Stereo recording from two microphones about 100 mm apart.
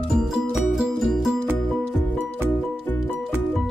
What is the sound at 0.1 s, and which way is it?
Music, centre (ahead or behind).